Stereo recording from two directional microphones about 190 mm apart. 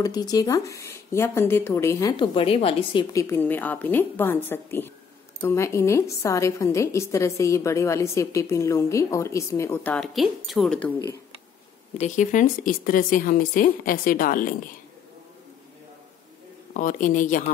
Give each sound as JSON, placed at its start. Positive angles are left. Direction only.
{"t": 0.0, "sound": "speech", "side_deg": 20}
{"t": 9.9, "sound": "a woman's voice", "side_deg": 0}
{"t": 12.0, "sound": "a woman's voice", "side_deg": 40}
{"t": 16.7, "sound": "a woman's voice", "side_deg": 45}